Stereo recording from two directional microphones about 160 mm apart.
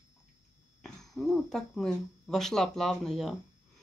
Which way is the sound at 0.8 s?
5° left (ahead or behind).